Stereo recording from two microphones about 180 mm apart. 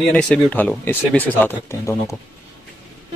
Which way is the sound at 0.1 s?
5° left (ahead or behind).